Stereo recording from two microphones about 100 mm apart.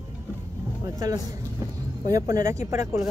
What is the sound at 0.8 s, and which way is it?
Speech, 35° right (ahead or behind).